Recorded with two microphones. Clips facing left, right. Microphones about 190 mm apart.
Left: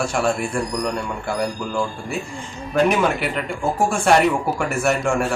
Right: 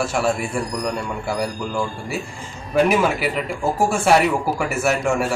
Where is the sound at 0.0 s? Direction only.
Centre (ahead or behind).